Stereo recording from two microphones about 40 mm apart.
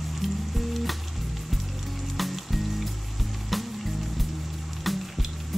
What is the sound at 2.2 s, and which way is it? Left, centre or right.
Music, centre.